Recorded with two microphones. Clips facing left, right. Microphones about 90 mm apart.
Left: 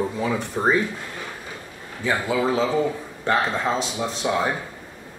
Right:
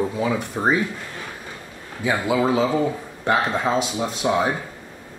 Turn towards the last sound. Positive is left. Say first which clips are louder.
# right 2 dB
turn(degrees=-10)  # may be behind; listen again after turning